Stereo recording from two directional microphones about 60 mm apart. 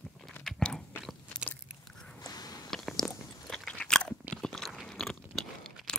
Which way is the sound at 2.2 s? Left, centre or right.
Left.